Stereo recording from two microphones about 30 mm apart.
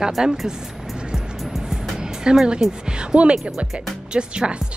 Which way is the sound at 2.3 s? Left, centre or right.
Right.